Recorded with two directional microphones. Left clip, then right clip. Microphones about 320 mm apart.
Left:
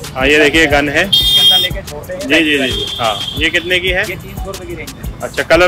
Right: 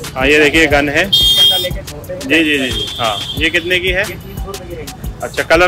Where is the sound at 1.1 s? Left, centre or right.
Centre.